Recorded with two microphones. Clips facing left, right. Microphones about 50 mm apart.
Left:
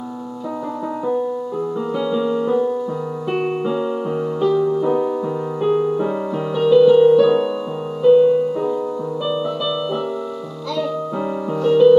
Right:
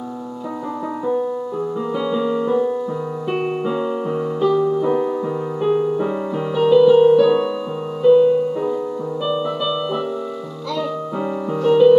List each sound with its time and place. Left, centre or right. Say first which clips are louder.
2.0 s music: left 1 dB; centre
3.3 s piano: left 1 dB; centre
4.6 s music: even; centre
5.6 s music: left 1 dB; centre
11.6 s music: even; centre